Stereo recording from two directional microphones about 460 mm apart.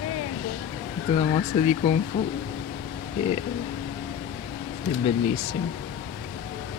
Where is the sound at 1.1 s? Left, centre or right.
Centre.